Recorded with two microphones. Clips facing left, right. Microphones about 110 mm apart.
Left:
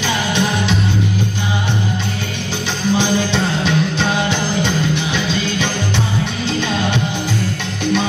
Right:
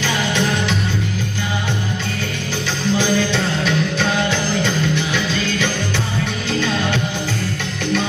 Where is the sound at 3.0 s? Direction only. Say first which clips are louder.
Left 1 dB; 20° left (ahead or behind).